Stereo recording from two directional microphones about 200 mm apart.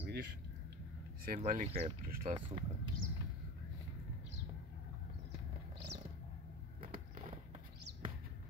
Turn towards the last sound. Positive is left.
turn(degrees=-45)  # may be behind; listen again after turning